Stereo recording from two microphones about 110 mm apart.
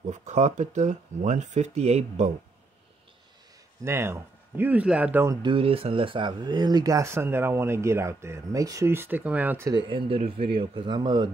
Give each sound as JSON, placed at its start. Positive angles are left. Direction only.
{"t": 0.1, "sound": "speech", "side_deg": -90}
{"t": 3.8, "sound": "speech", "side_deg": -25}
{"t": 5.4, "sound": "speech", "side_deg": -55}
{"t": 9.8, "sound": "speech", "side_deg": -50}